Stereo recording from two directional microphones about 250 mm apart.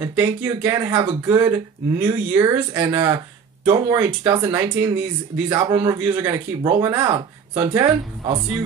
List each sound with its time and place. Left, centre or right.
0.1 s speech: centre